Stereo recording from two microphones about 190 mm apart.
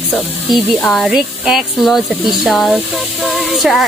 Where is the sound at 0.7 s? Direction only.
Centre (ahead or behind).